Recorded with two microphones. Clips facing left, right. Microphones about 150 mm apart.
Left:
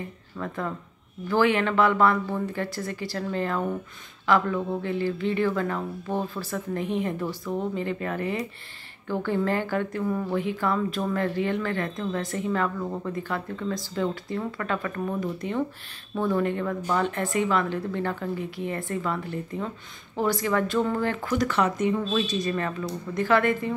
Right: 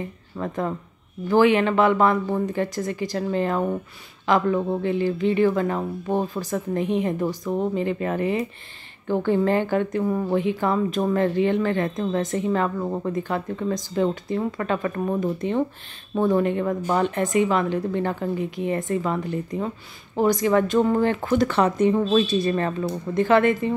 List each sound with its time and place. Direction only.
0.4 s speech: 25° right (ahead or behind)